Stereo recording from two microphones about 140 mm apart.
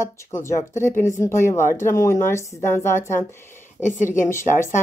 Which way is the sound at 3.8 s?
60° left (ahead or behind).